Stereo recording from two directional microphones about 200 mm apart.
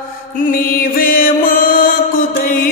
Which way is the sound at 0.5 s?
45° left (ahead or behind).